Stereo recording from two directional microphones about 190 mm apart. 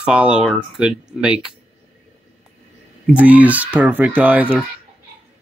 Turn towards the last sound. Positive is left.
turn(degrees=-10)  # may be behind; listen again after turning